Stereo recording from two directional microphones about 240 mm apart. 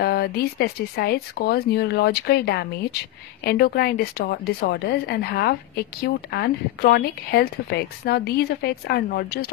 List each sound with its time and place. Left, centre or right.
0.0 s speech: left